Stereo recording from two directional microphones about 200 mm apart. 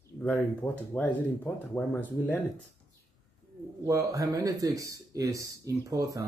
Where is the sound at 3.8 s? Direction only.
15° right (ahead or behind).